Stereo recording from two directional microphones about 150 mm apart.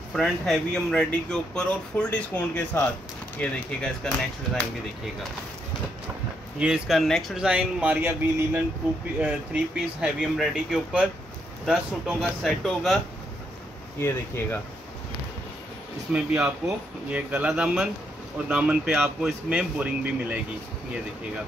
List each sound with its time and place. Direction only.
0.1 s speech: centre (ahead or behind)
6.6 s speech: 5° right (ahead or behind)
13.9 s speech: 15° left (ahead or behind)
16.1 s speech: 10° right (ahead or behind)